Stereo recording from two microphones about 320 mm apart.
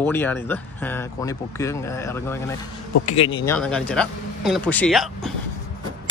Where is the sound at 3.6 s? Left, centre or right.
Centre.